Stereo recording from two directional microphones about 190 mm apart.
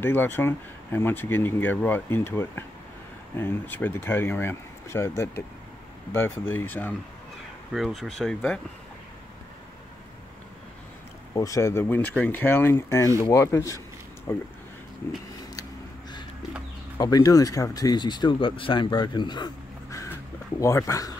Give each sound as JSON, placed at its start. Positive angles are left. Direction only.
{"t": 0.0, "sound": "speech", "side_deg": 10}
{"t": 11.3, "sound": "speech", "side_deg": 15}
{"t": 17.0, "sound": "speech", "side_deg": 20}